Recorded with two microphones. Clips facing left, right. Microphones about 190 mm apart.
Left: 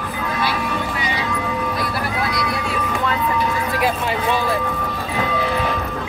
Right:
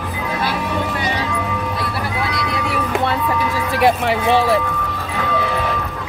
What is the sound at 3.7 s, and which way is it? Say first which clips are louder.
Speech: right 9 dB; 85° right.